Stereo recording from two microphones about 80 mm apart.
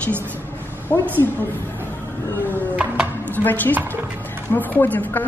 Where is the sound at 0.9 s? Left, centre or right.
Left.